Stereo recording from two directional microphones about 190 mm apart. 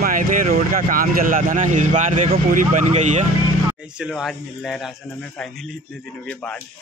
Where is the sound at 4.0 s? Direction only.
Centre (ahead or behind).